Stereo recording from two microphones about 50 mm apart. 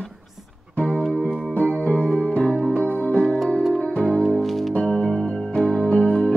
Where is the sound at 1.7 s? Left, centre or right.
Left.